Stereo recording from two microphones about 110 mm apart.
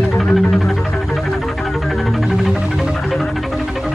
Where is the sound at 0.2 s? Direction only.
Centre (ahead or behind).